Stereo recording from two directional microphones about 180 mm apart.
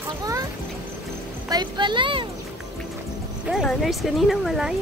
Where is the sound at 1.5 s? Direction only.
25° right (ahead or behind).